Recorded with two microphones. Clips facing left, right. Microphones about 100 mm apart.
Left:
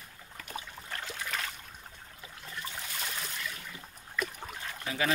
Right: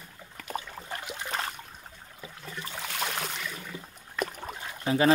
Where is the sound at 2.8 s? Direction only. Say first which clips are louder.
Right 7 dB; 80° right.